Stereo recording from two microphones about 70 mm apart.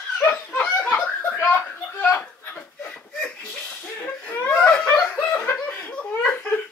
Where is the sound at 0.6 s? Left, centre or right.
Left.